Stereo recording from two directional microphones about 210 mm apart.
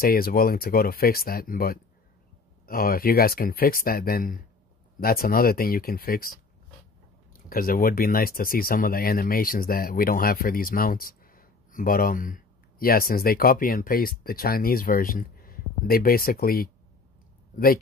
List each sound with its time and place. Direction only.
0.0 s speech: 45° left (ahead or behind)
7.3 s speech: 45° left (ahead or behind)